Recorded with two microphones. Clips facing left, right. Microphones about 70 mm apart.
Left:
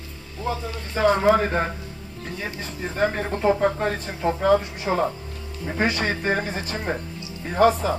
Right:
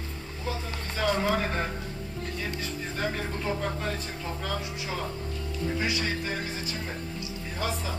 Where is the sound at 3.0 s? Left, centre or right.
Left.